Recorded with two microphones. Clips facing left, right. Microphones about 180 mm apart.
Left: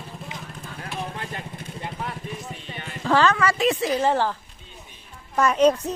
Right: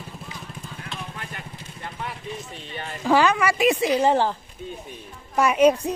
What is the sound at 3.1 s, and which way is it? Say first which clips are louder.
Speech: right 1 dB; 10° right (ahead or behind).